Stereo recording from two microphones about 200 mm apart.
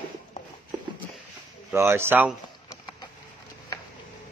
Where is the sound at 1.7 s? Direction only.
10° right (ahead or behind).